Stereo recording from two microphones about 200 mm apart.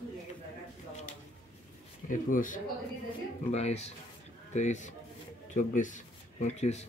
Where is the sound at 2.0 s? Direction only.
40° left (ahead or behind).